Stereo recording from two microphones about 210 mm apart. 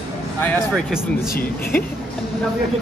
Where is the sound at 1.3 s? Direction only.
45° left (ahead or behind).